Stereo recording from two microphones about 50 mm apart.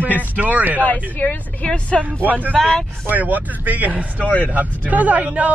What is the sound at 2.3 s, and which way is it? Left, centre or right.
Speech, right.